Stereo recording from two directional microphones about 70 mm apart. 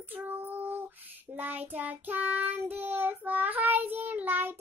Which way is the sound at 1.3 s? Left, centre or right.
Right.